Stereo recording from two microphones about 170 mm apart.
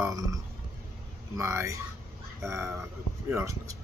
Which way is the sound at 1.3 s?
15° right (ahead or behind).